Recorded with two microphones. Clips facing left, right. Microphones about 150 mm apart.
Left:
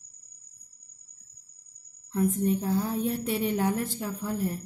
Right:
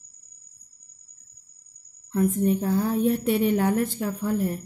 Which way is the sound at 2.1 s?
65° right (ahead or behind).